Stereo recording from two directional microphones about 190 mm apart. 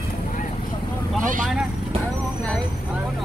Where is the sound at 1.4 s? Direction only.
Centre (ahead or behind).